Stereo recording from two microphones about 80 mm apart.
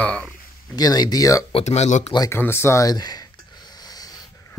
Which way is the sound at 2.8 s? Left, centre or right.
Left.